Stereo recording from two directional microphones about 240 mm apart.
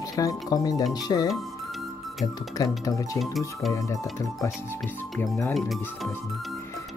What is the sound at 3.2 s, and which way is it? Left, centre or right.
Speech, centre.